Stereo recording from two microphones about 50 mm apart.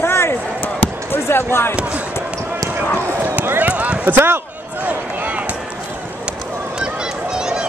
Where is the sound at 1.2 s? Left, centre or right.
Left.